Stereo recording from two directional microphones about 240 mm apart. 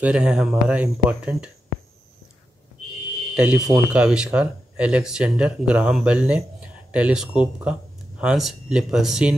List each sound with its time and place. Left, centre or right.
0.0 s speech: centre
3.3 s speech: centre